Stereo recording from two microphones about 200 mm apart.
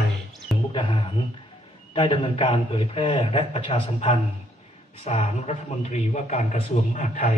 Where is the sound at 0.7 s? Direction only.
25° left (ahead or behind).